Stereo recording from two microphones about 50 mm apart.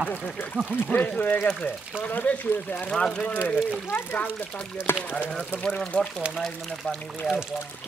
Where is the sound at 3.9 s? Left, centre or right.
Left.